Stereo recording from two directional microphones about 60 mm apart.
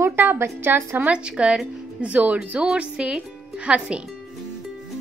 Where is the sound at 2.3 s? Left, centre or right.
Centre.